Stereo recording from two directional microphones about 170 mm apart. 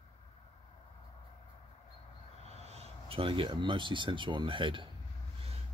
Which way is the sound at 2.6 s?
40° right (ahead or behind).